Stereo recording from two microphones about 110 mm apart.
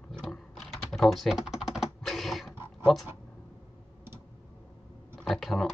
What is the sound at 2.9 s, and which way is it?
Speech, centre (ahead or behind).